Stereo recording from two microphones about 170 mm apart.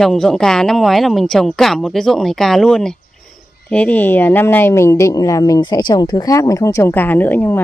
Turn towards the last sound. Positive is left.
turn(degrees=10)  # may be behind; listen again after turning